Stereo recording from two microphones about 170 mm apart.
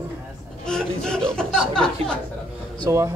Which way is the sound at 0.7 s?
5° left (ahead or behind).